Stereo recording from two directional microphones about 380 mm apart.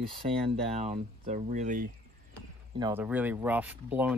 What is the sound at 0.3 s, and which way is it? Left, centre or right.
Speech, centre.